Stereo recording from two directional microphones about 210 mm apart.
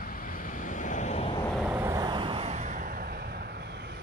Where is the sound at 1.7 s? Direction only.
15° right (ahead or behind); by 4.0 s 50° right (ahead or behind).